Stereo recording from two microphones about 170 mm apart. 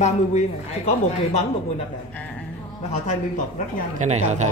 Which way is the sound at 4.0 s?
45° right (ahead or behind).